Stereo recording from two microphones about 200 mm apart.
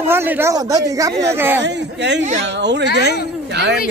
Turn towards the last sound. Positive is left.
turn(degrees=-60)  # may be behind; listen again after turning